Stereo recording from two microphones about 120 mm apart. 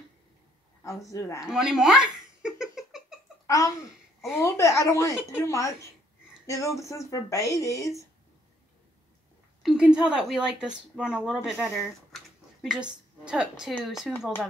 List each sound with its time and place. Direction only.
0.8 s speech: 25° left (ahead or behind)
1.4 s giggle: 5° right (ahead or behind)
3.4 s a child's voice: 25° left (ahead or behind)
9.6 s a woman's voice: 5° right (ahead or behind)
13.2 s a woman's voice: 5° right (ahead or behind)